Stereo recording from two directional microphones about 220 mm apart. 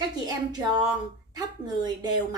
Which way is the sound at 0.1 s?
20° right (ahead or behind).